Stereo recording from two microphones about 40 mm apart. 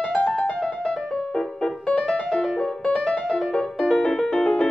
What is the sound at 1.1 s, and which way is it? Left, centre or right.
Music, left.